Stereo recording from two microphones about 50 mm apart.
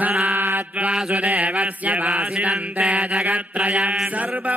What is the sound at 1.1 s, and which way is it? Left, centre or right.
Mantra, right.